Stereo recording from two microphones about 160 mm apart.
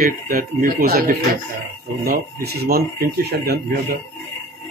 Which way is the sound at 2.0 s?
80° right.